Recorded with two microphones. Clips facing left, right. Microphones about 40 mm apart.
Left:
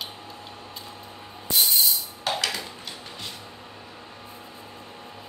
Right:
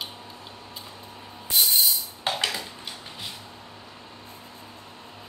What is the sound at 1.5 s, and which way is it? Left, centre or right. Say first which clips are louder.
Music: even; centre.